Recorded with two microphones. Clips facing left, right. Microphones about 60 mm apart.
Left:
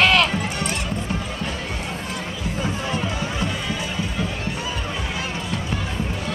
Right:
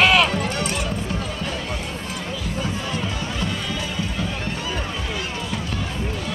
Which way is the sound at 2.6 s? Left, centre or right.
Centre.